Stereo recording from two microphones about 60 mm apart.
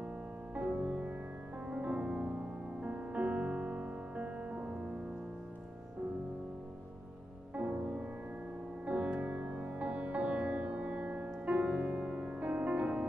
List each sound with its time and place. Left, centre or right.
0.6 s music: right
7.5 s music: right